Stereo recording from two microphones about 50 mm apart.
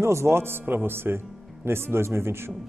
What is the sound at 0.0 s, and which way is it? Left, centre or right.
Speech, right.